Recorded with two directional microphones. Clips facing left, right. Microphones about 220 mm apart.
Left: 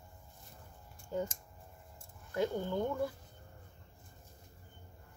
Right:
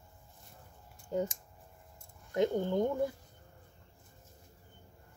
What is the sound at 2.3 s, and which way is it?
Speech, 20° right (ahead or behind).